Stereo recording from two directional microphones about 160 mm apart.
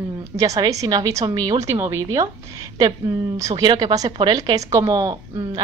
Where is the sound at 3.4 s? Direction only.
20° right (ahead or behind).